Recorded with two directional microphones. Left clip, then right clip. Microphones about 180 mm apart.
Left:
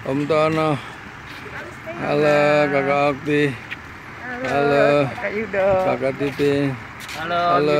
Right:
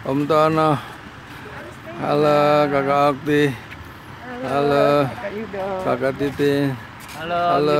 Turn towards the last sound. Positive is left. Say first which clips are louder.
# even
turn(degrees=-20)  # may be behind; listen again after turning